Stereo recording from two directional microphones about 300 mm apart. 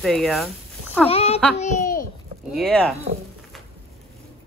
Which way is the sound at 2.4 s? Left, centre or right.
Centre.